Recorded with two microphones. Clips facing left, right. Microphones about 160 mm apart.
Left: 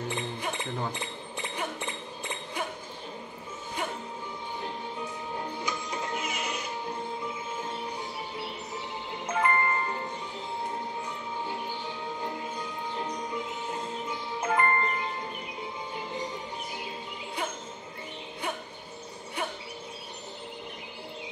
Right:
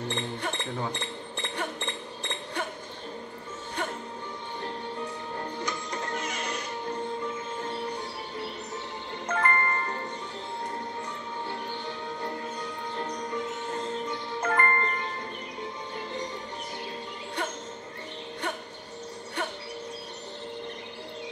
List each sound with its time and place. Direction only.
0.1 s a sound: 5° left (ahead or behind)
5.3 s music: 10° left (ahead or behind)
9.3 s music: 10° left (ahead or behind)
12.9 s music: 5° left (ahead or behind)